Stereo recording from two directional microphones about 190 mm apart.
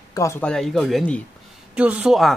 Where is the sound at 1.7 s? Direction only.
5° right (ahead or behind).